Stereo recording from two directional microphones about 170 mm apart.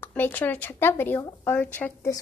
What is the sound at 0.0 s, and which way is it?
A woman's voice, 10° left (ahead or behind).